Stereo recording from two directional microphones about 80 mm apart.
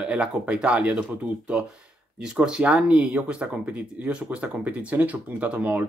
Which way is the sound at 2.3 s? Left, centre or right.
Centre.